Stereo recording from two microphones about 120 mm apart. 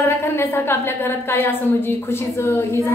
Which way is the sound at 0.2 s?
20° left (ahead or behind).